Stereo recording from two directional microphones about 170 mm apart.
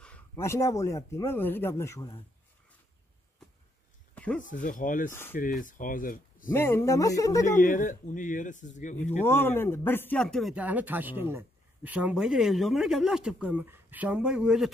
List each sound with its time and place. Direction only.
0.0 s speech: 10° left (ahead or behind)
4.1 s a sound: 10° left (ahead or behind)
4.4 s speech: 50° left (ahead or behind)
6.5 s speech: 15° left (ahead or behind)
7.4 s speech: 50° left (ahead or behind)
9.2 s speech: 15° left (ahead or behind); by 14.7 s 5° right (ahead or behind)